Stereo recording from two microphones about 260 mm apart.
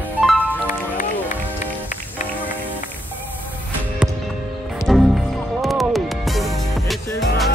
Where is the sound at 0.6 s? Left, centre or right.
Left.